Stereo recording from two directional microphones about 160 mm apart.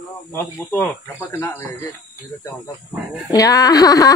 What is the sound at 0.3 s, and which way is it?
Speech, 15° left (ahead or behind).